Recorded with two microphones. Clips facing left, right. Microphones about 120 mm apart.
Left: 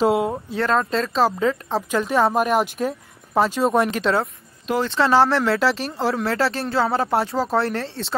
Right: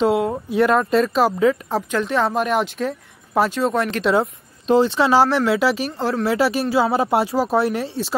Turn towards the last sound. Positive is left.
turn(degrees=-5)  # may be behind; listen again after turning